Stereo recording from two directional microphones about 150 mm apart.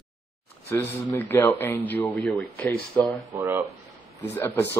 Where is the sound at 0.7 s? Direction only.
15° left (ahead or behind).